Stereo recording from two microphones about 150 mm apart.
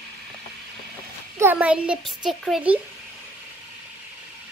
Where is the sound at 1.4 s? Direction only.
10° right (ahead or behind).